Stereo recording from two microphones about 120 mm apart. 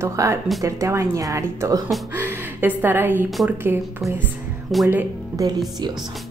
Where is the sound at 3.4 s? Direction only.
15° right (ahead or behind).